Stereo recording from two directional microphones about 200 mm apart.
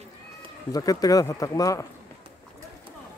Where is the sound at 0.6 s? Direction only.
20° left (ahead or behind).